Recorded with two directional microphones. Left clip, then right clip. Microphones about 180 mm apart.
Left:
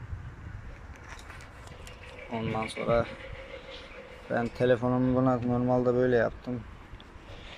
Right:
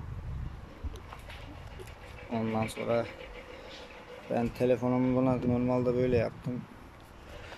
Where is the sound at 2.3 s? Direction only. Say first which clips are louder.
Even; 10° right (ahead or behind).